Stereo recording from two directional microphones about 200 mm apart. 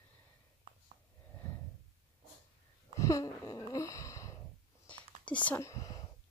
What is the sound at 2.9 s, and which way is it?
Wheeze, 15° left (ahead or behind).